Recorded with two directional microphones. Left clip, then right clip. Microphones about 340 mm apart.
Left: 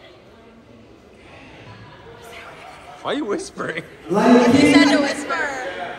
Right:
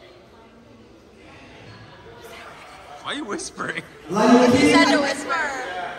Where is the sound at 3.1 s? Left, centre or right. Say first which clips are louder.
Left 5 dB; centre.